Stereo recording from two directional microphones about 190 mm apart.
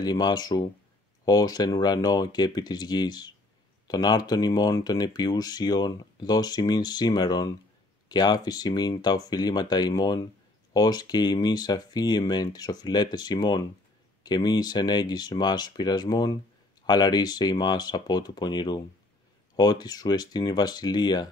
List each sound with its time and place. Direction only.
0.0 s speech: 20° left (ahead or behind)